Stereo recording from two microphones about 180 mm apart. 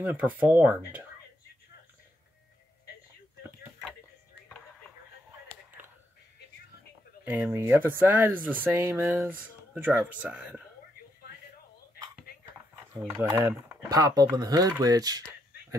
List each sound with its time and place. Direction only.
0.0 s speech: 10° right (ahead or behind)
7.2 s speech: 10° right (ahead or behind)
13.0 s speech: 15° right (ahead or behind)